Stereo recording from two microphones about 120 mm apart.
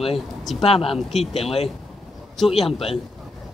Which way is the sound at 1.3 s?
55° left (ahead or behind).